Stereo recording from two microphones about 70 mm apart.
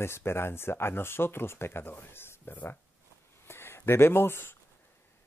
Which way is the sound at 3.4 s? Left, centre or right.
Left.